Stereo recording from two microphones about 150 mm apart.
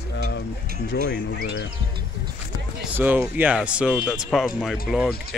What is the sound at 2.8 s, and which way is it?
Speech, 15° right (ahead or behind).